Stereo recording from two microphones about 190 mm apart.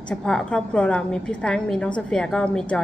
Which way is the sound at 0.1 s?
5° left (ahead or behind).